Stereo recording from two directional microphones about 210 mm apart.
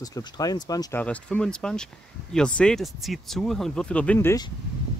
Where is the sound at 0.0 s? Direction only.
15° left (ahead or behind).